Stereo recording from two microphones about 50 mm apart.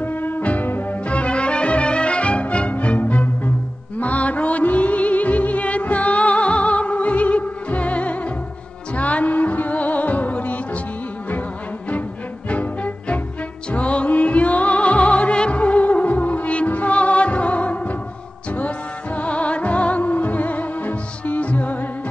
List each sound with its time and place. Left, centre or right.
0.0 s music: left
1.0 s music: left
12.4 s music: left
19.1 s music: left